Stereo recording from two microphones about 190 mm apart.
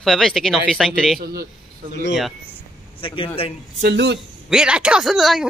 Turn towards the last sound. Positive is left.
turn(degrees=0)  # may be behind; listen again after turning